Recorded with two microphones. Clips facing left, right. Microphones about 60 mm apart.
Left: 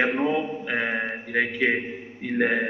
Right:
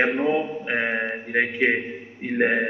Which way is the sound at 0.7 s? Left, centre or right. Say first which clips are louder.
Right 2 dB; centre.